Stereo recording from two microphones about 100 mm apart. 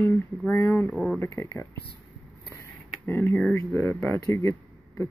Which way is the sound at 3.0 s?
20° left (ahead or behind).